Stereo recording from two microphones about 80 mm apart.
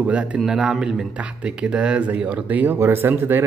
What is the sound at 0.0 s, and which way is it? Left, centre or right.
A man's voice, centre.